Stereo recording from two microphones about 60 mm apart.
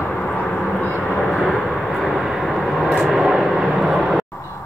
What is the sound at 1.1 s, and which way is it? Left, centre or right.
Vehicle, centre.